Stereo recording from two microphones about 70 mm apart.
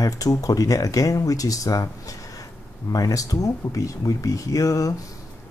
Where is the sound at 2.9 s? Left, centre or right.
Left.